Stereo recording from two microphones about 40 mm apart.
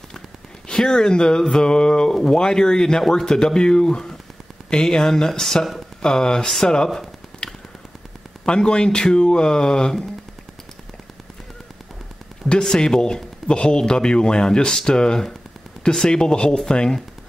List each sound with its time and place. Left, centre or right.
0.7 s a man's voice: centre
8.5 s a man's voice: left
12.4 s a man's voice: centre